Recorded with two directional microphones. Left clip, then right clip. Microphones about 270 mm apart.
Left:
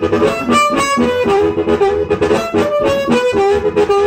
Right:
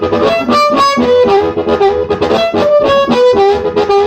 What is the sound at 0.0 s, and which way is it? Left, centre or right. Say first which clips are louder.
Harmonica: right 3 dB; right.